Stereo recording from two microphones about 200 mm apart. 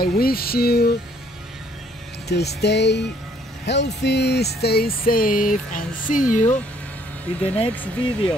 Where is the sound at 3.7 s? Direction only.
55° left (ahead or behind); by 6.5 s 40° left (ahead or behind).